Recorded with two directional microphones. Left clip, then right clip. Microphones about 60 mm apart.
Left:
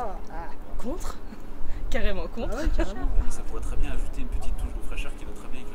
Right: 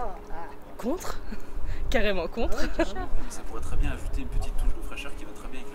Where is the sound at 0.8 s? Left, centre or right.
Right.